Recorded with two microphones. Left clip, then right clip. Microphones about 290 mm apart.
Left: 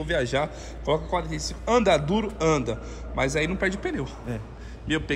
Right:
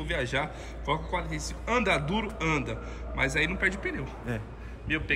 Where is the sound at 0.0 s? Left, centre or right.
Centre.